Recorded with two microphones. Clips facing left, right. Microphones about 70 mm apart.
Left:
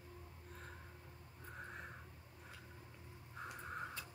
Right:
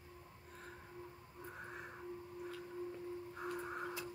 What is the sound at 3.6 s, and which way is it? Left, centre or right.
Crow, centre.